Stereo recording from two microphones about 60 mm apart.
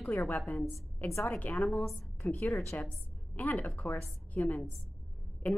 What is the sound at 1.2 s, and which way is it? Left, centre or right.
Speech, left.